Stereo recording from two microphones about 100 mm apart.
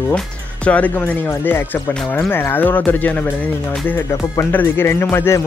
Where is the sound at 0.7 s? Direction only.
15° left (ahead or behind).